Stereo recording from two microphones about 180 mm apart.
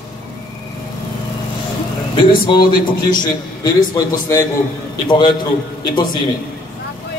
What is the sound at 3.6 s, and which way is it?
Speech, 15° left (ahead or behind).